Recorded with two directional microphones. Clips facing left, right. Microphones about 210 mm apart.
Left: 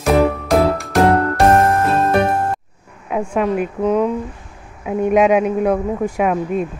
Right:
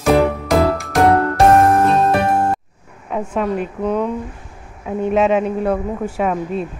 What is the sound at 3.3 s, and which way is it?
A man's voice, 10° left (ahead or behind).